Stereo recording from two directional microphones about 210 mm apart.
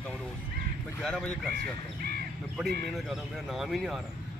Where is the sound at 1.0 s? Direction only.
5° left (ahead or behind).